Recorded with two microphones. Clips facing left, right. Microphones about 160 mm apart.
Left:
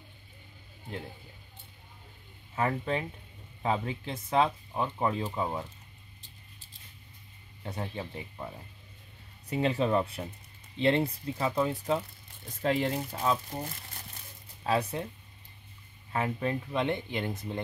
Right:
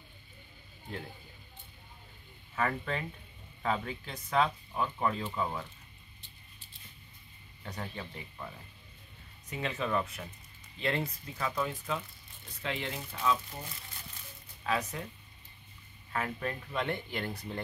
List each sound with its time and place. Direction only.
2.5 s speech: 20° left (ahead or behind)
7.6 s speech: 25° left (ahead or behind)
16.1 s speech: 25° left (ahead or behind)